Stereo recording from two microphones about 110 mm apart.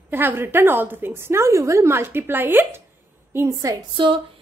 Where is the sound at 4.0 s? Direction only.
45° right (ahead or behind).